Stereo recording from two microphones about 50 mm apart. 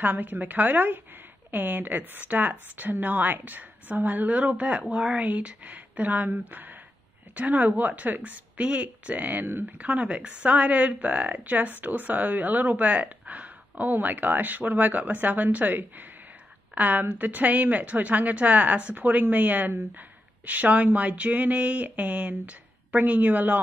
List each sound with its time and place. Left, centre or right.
0.0 s a woman's voice: right